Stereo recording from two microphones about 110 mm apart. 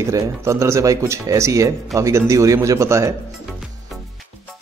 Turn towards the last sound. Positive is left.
turn(degrees=-25)  # may be behind; listen again after turning